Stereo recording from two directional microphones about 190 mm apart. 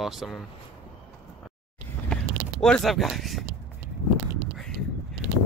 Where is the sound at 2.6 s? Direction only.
5° left (ahead or behind).